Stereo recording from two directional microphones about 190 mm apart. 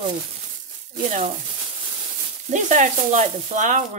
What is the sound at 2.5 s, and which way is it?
Speech, 40° right (ahead or behind).